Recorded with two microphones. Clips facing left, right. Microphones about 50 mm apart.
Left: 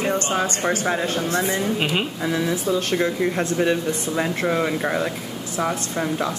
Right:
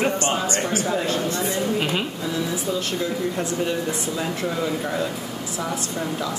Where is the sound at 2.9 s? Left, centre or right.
Left.